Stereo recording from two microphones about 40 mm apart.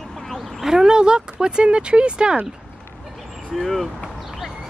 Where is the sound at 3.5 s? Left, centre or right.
Centre.